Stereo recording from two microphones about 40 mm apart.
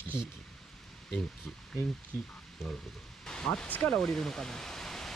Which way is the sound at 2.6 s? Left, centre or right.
Centre.